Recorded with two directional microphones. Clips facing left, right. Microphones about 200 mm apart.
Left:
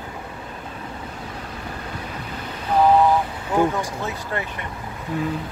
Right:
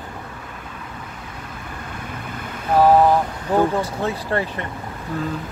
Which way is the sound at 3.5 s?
35° right (ahead or behind).